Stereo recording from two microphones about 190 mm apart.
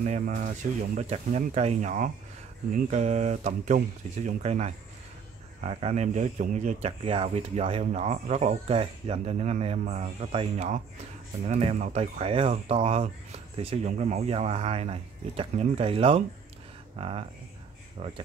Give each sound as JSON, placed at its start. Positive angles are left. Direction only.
{"t": 0.5, "sound": "speech", "side_deg": -40}